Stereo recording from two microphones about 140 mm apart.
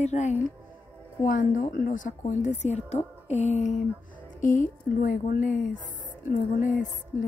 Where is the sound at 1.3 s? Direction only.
70° left (ahead or behind).